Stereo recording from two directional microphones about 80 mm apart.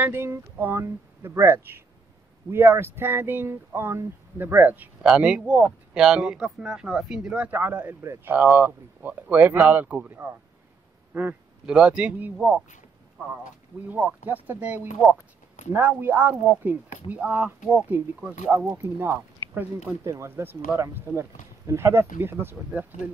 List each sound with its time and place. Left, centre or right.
0.0 s speech: right
5.0 s speech: centre
10.0 s speech: right
11.1 s speech: centre
13.8 s speech: centre
18.8 s speech: right